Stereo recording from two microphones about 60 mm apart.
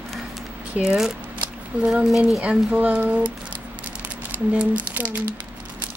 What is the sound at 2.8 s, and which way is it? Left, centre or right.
Speech, right.